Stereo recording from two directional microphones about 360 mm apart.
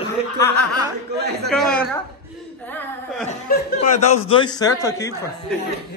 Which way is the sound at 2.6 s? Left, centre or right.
Centre.